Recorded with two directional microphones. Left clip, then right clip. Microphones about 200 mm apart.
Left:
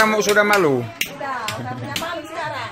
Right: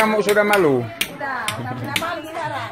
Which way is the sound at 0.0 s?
5° right (ahead or behind).